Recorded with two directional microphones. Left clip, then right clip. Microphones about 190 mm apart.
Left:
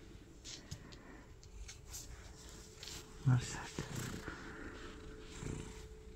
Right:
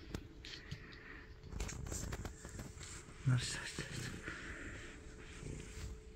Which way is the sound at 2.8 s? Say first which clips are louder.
Left 3 dB; 25° left (ahead or behind).